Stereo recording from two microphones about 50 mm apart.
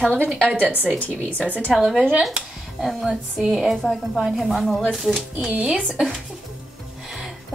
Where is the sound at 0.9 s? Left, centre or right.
Left.